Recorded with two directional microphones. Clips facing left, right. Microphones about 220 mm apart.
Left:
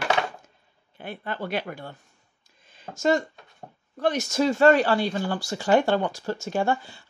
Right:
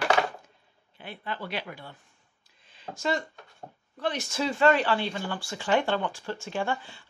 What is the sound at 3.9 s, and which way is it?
Speech, 45° left (ahead or behind).